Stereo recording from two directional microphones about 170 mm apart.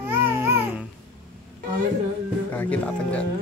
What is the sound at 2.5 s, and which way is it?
Speech, 10° left (ahead or behind).